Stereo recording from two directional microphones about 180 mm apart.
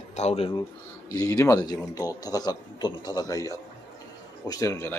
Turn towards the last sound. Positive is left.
turn(degrees=15)  # may be behind; listen again after turning